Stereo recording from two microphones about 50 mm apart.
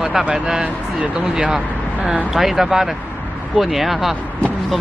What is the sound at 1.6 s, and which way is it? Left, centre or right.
Speech, right.